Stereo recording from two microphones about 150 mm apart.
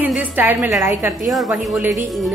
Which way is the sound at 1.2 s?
Centre (ahead or behind).